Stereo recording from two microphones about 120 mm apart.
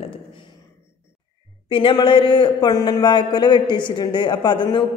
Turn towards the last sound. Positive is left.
turn(degrees=40)  # may be behind; listen again after turning